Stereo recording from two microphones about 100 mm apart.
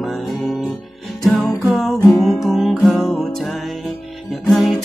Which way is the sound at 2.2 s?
Centre (ahead or behind).